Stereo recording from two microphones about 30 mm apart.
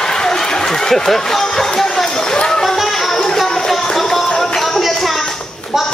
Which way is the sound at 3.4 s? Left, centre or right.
Centre.